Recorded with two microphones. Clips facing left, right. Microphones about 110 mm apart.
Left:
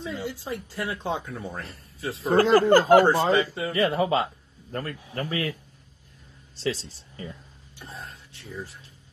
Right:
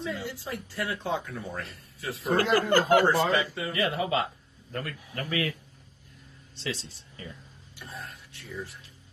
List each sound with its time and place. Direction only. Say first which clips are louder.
0.0 s speech: left 2 dB; 25° left (ahead or behind)
6.5 s speech: left 6 dB; 35° left (ahead or behind)